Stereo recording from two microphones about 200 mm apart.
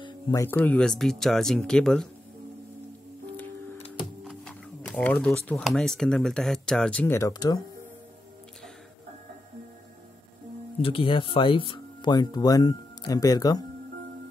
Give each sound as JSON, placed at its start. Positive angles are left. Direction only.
{"t": 0.0, "sound": "speech", "side_deg": 15}
{"t": 4.2, "sound": "speech", "side_deg": 0}
{"t": 10.8, "sound": "speech", "side_deg": 25}